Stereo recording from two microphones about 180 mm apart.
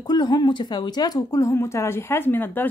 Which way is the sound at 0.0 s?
25° left (ahead or behind).